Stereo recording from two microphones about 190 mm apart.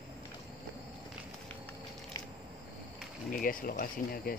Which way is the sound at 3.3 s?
45° left (ahead or behind).